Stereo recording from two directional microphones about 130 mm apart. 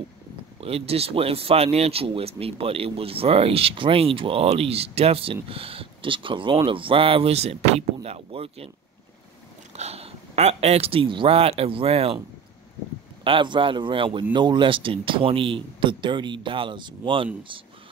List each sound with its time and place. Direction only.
0.6 s speech: 50° right (ahead or behind)
9.8 s speech: 55° right (ahead or behind)
13.2 s speech: 40° right (ahead or behind)